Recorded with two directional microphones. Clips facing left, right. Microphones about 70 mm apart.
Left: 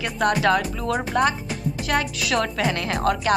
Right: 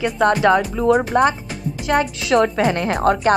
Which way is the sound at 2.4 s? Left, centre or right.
Right.